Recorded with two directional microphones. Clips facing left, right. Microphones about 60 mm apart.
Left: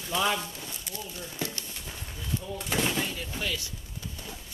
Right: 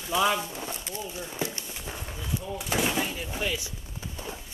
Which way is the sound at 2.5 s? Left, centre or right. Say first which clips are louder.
Right 2 dB; centre.